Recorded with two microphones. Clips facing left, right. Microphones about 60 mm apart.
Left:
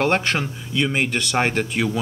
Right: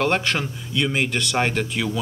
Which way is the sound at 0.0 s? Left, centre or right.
Centre.